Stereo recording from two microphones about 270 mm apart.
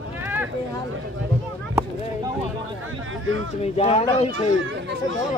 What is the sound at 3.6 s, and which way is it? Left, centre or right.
Speech, left.